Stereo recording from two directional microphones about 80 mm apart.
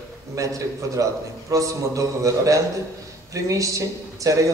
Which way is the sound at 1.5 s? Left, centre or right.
Right.